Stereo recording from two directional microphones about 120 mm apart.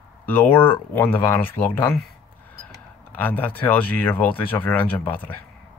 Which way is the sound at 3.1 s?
15° left (ahead or behind).